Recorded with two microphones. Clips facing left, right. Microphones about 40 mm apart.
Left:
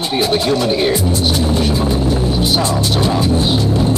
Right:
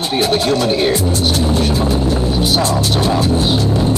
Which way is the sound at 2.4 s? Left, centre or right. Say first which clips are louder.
Right 1 dB; centre.